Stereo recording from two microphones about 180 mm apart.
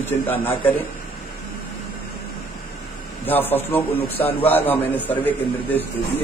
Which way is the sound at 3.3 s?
10° left (ahead or behind).